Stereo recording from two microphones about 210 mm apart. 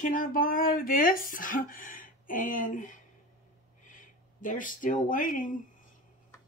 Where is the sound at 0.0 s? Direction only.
40° left (ahead or behind).